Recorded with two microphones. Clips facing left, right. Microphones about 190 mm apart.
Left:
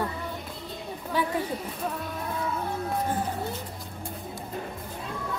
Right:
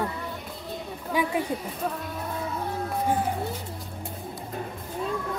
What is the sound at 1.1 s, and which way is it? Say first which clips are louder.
Speech: right 2 dB; 15° right (ahead or behind).